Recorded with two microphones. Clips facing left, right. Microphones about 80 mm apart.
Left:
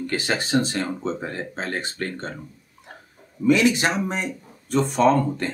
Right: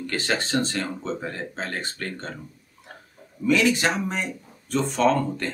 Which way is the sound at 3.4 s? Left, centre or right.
Centre.